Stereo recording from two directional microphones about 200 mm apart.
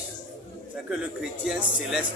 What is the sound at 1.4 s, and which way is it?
Speech, 5° right (ahead or behind).